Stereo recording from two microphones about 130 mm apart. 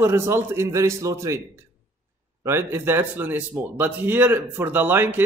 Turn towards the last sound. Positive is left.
turn(degrees=-15)  # may be behind; listen again after turning